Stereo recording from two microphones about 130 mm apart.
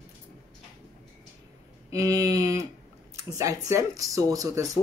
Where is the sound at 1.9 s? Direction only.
25° right (ahead or behind).